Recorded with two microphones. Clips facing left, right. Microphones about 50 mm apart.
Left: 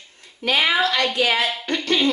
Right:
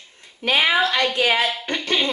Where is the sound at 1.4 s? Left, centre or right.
Centre.